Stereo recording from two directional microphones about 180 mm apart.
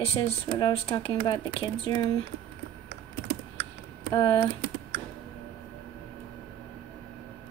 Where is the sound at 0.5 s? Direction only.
25° left (ahead or behind).